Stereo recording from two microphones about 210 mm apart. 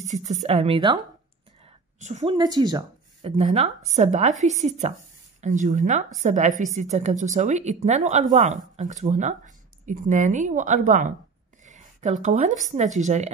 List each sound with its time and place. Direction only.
0.1 s speech: 35° right (ahead or behind)
2.0 s a woman's voice: 35° right (ahead or behind)
2.3 s speech: 20° right (ahead or behind)
3.2 s speech: 30° right (ahead or behind)